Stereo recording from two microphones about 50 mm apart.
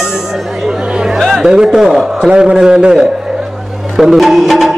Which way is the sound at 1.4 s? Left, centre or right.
Centre.